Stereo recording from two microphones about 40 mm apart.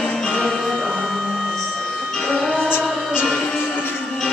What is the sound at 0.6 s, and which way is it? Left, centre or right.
Music, centre.